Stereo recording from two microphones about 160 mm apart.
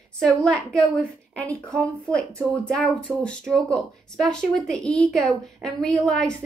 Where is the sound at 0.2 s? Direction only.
5° left (ahead or behind).